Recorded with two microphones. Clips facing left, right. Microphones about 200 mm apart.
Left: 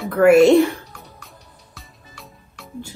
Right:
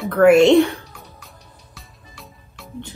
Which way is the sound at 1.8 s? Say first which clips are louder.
Left 1 dB; centre (ahead or behind).